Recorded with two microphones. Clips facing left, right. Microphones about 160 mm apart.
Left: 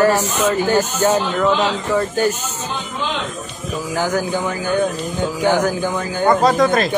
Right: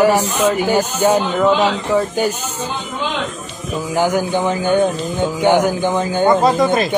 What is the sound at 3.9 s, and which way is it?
Speech, 15° right (ahead or behind).